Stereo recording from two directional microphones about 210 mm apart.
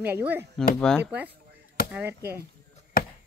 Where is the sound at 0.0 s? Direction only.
10° right (ahead or behind).